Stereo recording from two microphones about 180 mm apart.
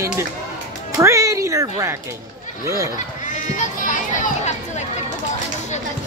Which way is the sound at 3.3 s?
45° left (ahead or behind).